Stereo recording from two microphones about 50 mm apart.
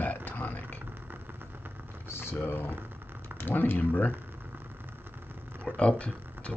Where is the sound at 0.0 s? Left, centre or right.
Left.